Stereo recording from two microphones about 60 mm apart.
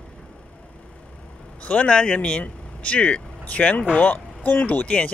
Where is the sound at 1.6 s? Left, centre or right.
Left.